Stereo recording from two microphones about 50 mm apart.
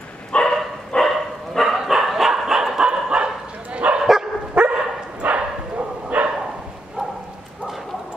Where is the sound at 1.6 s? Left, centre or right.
Centre; by 6.3 s right.